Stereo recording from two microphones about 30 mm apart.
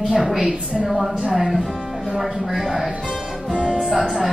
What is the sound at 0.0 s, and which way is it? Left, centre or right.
A woman's voice, centre.